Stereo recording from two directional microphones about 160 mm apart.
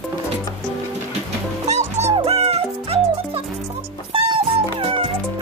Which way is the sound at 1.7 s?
45° right (ahead or behind).